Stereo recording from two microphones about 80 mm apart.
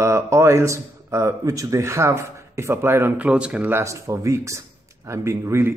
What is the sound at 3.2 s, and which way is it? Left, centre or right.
Speech, centre.